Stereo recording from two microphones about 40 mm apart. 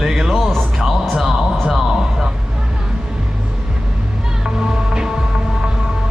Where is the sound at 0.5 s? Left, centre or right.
Centre.